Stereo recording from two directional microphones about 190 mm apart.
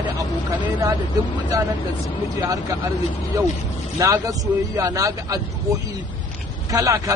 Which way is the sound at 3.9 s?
15° right (ahead or behind).